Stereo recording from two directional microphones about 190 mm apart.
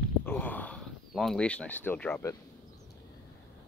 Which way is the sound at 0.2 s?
10° left (ahead or behind).